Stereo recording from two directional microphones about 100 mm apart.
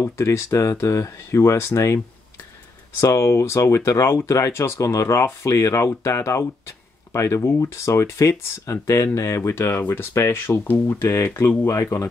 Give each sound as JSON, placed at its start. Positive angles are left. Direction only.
{"t": 0.0, "sound": "speech", "side_deg": 25}
{"t": 3.0, "sound": "speech", "side_deg": 30}